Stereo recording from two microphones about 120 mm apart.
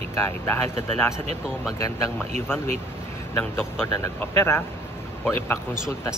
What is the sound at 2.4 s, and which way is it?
Speech, 20° left (ahead or behind).